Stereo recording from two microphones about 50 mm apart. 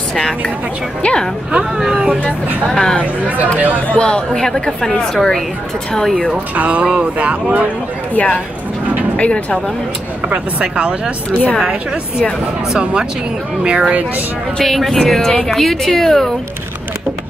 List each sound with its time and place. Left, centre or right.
1.0 s speech: centre
1.5 s speech: centre
2.7 s speech: centre
3.5 s speech: right
3.9 s speech: centre
6.3 s speech: right
8.1 s speech: left
10.3 s speech: right
13.7 s speech: right
14.6 s speech: centre